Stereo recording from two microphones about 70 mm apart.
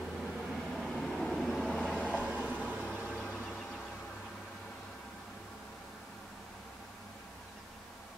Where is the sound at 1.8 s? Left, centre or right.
Centre.